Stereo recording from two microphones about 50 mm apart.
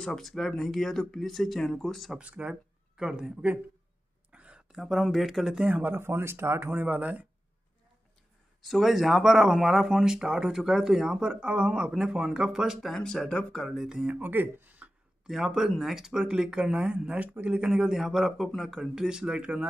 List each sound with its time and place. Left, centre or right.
0.0 s speech: centre
2.1 s speech: right
3.0 s speech: centre
4.3 s a sound: right
4.7 s speech: centre
5.7 s speech: right
5.9 s speech: right
6.6 s speech: right
8.6 s speech: centre
12.9 s speech: centre
13.7 s speech: centre
14.0 s speech: right
15.2 s speech: centre; by 17.6 s right
17.6 s speech: centre